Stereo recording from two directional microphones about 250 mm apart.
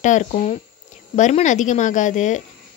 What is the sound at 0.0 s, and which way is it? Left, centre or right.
Speech, left.